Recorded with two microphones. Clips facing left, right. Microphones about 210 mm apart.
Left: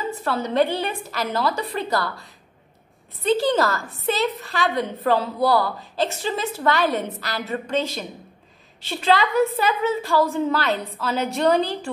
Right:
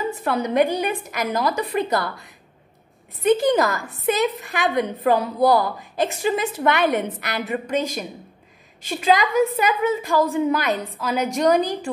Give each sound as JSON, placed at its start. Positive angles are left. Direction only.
{"t": 0.0, "sound": "a woman's voice", "side_deg": -15}